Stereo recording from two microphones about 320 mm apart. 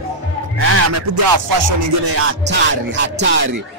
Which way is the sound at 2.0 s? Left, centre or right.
Right.